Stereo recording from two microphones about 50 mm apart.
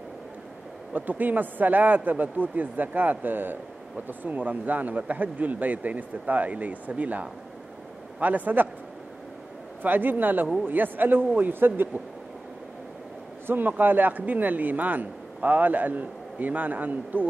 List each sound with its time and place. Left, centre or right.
0.9 s speech: right
9.8 s speech: right
13.5 s speech: right